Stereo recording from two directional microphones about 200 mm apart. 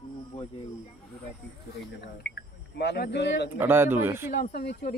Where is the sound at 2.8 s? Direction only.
60° left (ahead or behind).